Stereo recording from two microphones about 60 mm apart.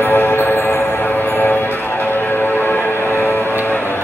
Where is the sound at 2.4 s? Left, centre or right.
Left.